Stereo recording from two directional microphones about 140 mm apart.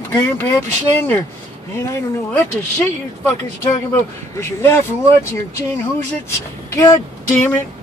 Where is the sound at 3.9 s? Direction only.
20° left (ahead or behind).